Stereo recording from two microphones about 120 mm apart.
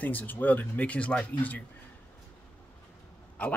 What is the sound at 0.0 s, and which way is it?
Speech, 15° left (ahead or behind).